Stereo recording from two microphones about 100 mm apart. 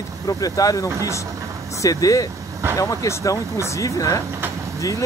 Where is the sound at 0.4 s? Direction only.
35° left (ahead or behind).